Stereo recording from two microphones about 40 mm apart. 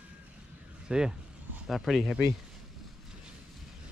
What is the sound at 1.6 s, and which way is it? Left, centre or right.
Speech, centre.